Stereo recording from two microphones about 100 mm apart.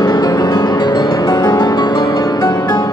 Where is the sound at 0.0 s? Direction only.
45° left (ahead or behind).